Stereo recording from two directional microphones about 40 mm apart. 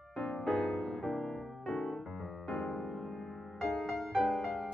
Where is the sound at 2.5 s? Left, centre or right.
Centre.